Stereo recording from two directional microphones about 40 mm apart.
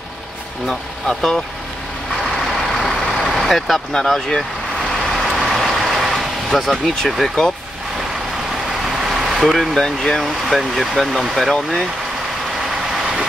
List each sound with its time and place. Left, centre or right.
1.0 s speech: centre
2.3 s vehicle: centre
3.9 s speech: centre
5.1 s vehicle: centre
6.5 s speech: centre
8.8 s vehicle: centre
9.4 s speech: centre
9.8 s speech: centre
10.6 s speech: centre